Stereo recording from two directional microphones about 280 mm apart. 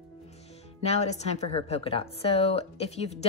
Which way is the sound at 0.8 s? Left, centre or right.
Left.